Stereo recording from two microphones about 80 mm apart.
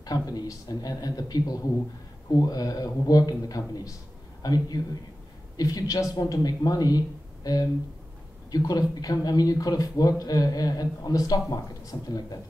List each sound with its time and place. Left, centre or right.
0.0 s speech: left